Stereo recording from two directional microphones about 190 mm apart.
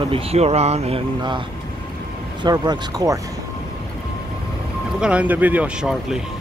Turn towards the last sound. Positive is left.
turn(degrees=-5)  # may be behind; listen again after turning